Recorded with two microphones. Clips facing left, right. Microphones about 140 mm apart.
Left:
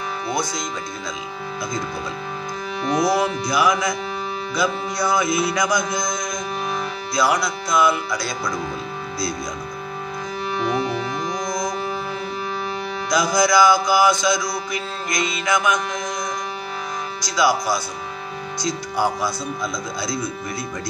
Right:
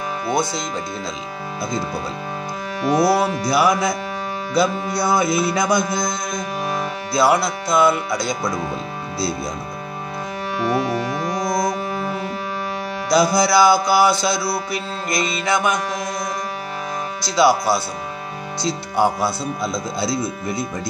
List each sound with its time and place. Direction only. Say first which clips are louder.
2.9 s music: right 3 dB; 30° right (ahead or behind)
10.7 s music: right 5 dB; 5° right (ahead or behind)
13.1 s music: right 2 dB; 30° right (ahead or behind)
17.2 s music: right 4 dB; 30° right (ahead or behind)